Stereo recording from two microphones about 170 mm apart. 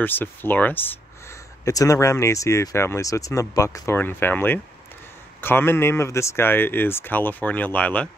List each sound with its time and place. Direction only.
0.0 s speech: 10° left (ahead or behind)